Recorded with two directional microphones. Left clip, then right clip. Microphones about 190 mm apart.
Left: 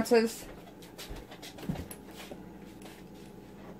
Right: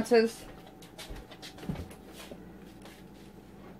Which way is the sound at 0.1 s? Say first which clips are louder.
Right 2 dB; 15° right (ahead or behind).